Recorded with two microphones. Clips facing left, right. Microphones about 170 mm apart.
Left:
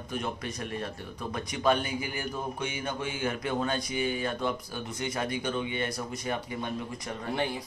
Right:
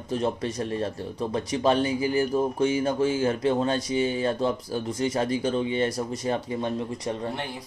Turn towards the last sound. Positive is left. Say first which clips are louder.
# right 7 dB
turn(degrees=-30)  # may be behind; listen again after turning